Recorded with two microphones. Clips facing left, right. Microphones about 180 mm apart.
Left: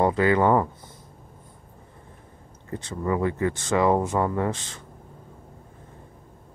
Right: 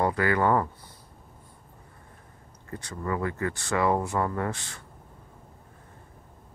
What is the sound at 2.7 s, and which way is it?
Speech, 20° left (ahead or behind).